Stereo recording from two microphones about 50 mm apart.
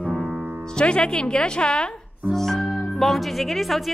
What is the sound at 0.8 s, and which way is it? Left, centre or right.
A woman's voice, centre.